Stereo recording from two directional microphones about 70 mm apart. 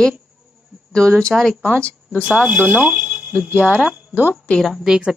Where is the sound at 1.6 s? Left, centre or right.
Centre.